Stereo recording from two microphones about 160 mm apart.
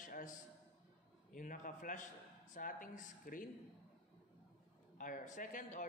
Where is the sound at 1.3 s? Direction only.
55° left (ahead or behind).